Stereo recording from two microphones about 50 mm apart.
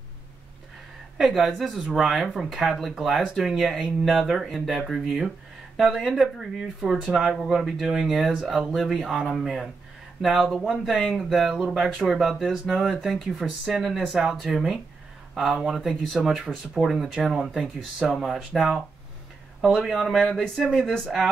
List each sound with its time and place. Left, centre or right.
1.1 s speech: centre
11.1 s speech: centre
20.8 s speech: centre